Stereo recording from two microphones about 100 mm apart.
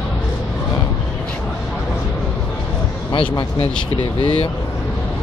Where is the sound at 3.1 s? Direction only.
45° left (ahead or behind).